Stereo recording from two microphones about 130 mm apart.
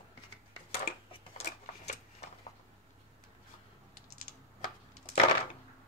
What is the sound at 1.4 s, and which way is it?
Typewriter, 60° left (ahead or behind).